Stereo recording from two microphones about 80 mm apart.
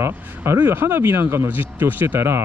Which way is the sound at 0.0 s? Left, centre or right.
Right.